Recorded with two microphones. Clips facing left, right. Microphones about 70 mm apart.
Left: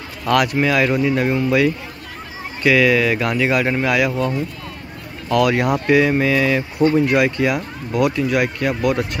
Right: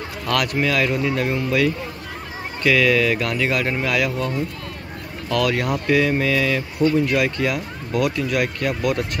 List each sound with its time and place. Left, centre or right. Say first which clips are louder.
0.6 s speech: left 3 dB; centre; by 7.2 s left
7.2 s speech: left 4 dB; centre